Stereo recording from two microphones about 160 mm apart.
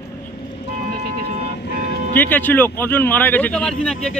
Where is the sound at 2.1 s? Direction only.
10° left (ahead or behind).